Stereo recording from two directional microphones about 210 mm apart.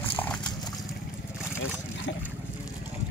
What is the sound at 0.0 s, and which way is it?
Clip-clop, 10° left (ahead or behind).